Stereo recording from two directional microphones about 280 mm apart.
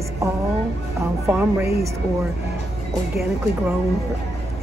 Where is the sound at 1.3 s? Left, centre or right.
Centre.